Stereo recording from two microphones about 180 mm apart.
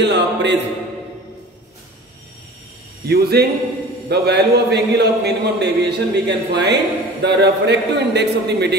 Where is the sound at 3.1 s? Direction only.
60° right (ahead or behind).